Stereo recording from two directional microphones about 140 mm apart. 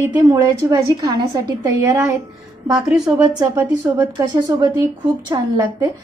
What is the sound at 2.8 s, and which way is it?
Speech, 5° right (ahead or behind).